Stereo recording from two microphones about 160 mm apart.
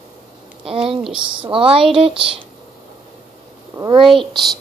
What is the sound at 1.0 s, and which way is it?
Speech, 5° right (ahead or behind).